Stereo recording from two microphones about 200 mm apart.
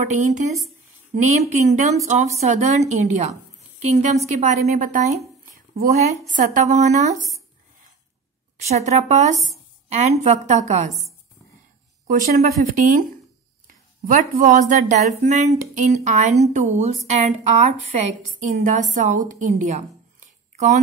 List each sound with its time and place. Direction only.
0.0 s speech: 35° right (ahead or behind)
6.2 s speech: 40° right (ahead or behind)
8.5 s a woman's voice: 35° right (ahead or behind)
12.4 s speech: 40° right (ahead or behind)